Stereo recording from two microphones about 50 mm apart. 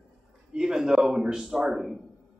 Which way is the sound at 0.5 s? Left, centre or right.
Centre.